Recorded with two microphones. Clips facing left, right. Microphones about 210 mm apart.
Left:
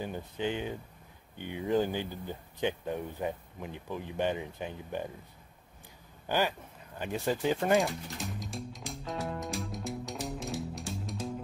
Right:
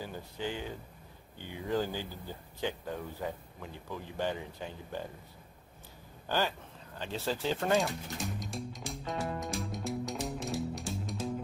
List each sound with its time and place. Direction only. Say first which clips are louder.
0.0 s speech: left 4 dB; 20° left (ahead or behind)
6.2 s speech: left 2 dB; 15° left (ahead or behind)
7.7 s music: left 2 dB; centre (ahead or behind)